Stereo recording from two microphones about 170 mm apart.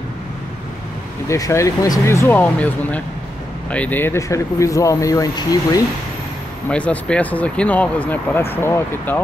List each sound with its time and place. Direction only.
1.3 s speech: 15° left (ahead or behind)
6.7 s speech: 5° left (ahead or behind)